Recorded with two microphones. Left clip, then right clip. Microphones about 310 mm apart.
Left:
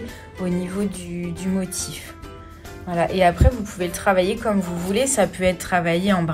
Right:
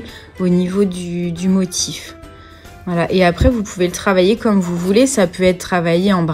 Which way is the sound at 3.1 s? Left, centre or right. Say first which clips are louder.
Right 5 dB; right.